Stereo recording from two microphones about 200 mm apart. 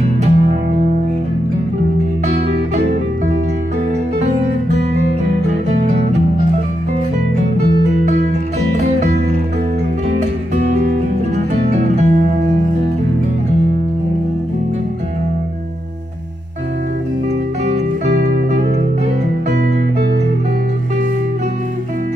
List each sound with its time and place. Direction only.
0.2 s music: 40° right (ahead or behind)
7.5 s music: 55° right (ahead or behind)
10.5 s music: 35° right (ahead or behind)
18.2 s music: 35° right (ahead or behind)